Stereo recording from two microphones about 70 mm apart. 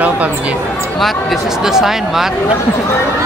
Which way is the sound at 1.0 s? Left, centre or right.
Centre.